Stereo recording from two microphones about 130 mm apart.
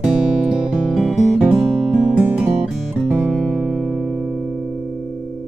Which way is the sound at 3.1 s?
5° right (ahead or behind).